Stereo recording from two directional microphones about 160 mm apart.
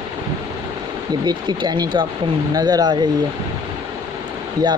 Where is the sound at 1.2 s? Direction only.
25° right (ahead or behind).